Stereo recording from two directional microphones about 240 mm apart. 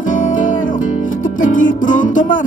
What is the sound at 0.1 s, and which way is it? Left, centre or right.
Music, left.